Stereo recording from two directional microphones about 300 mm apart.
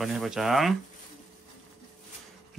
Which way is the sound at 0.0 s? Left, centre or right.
Centre.